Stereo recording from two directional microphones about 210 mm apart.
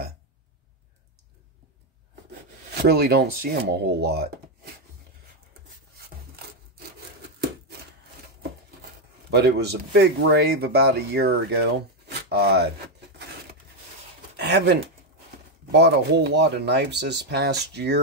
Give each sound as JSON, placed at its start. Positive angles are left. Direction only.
{"t": 2.7, "sound": "a man's voice", "side_deg": -50}
{"t": 9.3, "sound": "a man's voice", "side_deg": -50}
{"t": 14.3, "sound": "a sound", "side_deg": -50}
{"t": 15.7, "sound": "a man's voice", "side_deg": -50}